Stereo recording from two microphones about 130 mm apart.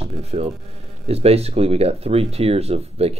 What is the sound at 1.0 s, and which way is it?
Speech, 55° right (ahead or behind).